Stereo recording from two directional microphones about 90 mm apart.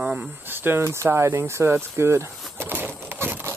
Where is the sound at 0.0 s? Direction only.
10° right (ahead or behind).